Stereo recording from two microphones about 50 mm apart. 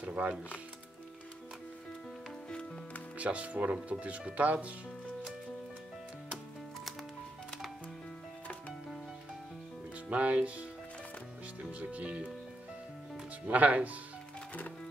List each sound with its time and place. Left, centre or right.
0.0 s a sound: right
3.2 s speech: right
10.0 s speech: right
11.8 s speech: right
13.5 s speech: right